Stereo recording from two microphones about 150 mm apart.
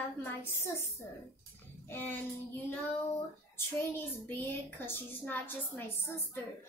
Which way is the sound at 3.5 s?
15° left (ahead or behind).